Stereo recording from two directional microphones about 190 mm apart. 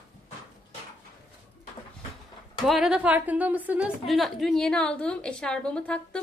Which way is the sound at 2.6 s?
Centre (ahead or behind).